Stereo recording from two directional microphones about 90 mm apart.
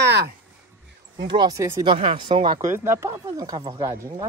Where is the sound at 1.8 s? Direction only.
70° right (ahead or behind).